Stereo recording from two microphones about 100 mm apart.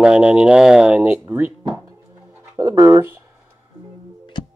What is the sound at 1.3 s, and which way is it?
Speech, 20° right (ahead or behind).